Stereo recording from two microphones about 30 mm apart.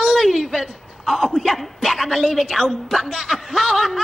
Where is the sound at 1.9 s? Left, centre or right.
Centre.